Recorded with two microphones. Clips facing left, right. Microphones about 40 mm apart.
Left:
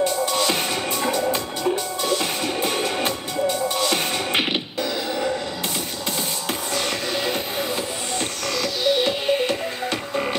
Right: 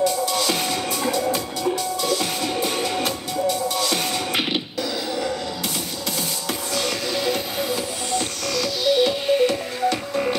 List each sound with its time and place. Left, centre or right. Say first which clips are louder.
0.0 s music: even; left
6.7 s music: right 1 dB; left